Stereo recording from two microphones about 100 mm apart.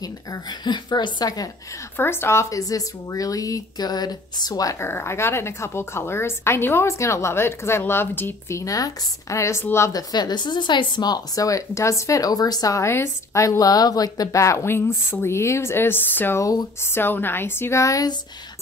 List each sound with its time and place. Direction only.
0.0 s speech: 45° left (ahead or behind)
2.0 s speech: 25° left (ahead or behind)
4.8 s a woman's voice: 25° left (ahead or behind)
10.1 s a woman's voice: 45° left (ahead or behind); by 16.3 s 20° left (ahead or behind)
16.3 s speech: 30° left (ahead or behind)
16.9 s a woman's voice: 20° left (ahead or behind)